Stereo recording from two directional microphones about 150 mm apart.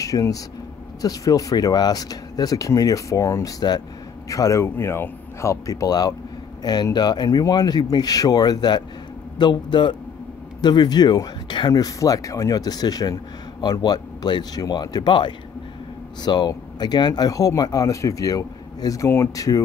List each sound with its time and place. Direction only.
0.0 s a man's voice: 20° left (ahead or behind)